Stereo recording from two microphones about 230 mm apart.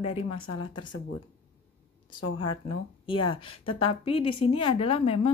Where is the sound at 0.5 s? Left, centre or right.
Left.